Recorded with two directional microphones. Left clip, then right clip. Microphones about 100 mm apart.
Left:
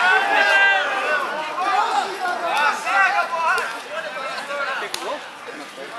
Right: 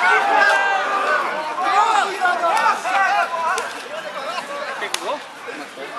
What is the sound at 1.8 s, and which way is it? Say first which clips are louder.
Chatter: right 4 dB; 20° right (ahead or behind).